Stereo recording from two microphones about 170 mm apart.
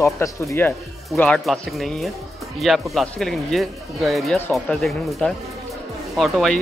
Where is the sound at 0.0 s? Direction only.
15° left (ahead or behind).